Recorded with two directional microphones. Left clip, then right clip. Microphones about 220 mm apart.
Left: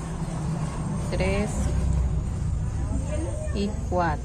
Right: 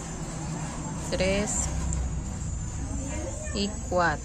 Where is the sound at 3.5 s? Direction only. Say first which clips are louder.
Right 1 dB; 15° right (ahead or behind).